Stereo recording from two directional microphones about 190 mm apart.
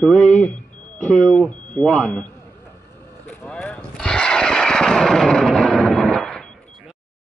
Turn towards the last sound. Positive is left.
turn(degrees=5)  # may be behind; listen again after turning